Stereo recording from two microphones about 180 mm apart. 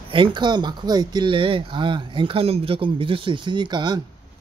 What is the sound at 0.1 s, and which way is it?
Speech, 25° right (ahead or behind).